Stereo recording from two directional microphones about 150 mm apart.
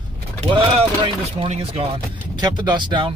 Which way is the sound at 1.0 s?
40° right (ahead or behind).